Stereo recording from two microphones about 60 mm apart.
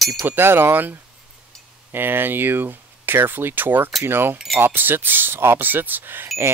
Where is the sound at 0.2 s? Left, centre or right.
Right.